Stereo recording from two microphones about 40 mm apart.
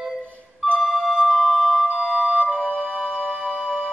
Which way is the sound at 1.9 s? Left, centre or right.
Right.